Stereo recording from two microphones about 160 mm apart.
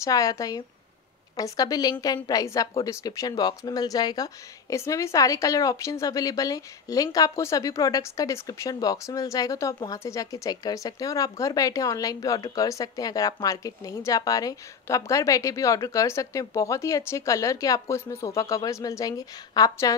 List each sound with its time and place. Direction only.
0.0 s speech: 20° left (ahead or behind)